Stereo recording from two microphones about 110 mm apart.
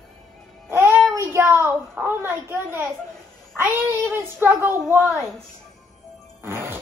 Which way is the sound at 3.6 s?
20° right (ahead or behind).